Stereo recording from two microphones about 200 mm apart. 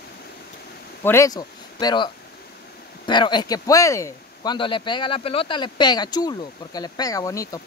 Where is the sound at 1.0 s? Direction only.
15° left (ahead or behind).